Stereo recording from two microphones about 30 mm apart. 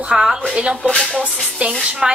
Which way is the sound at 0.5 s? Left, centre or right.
Right.